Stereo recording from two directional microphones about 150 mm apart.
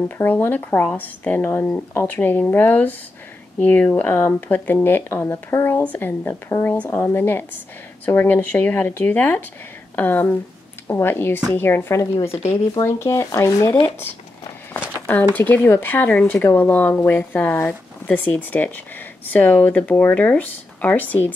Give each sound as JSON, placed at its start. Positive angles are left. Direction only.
{"t": 0.2, "sound": "speech", "side_deg": 15}
{"t": 15.0, "sound": "a sound", "side_deg": 10}
{"t": 15.3, "sound": "speech", "side_deg": 10}